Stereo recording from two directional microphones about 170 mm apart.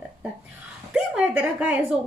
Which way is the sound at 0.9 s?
5° right (ahead or behind).